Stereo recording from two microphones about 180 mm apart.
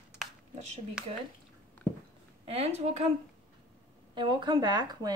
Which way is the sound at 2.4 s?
35° right (ahead or behind).